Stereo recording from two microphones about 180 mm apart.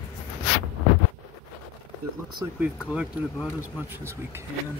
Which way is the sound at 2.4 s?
15° right (ahead or behind).